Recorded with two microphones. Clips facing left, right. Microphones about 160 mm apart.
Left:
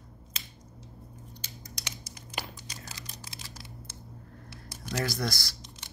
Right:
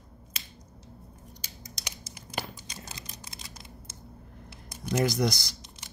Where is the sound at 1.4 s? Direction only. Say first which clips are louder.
Left 1 dB; 15° right (ahead or behind).